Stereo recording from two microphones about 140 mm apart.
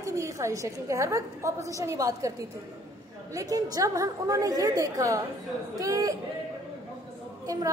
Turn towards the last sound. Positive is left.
turn(degrees=-25)  # may be behind; listen again after turning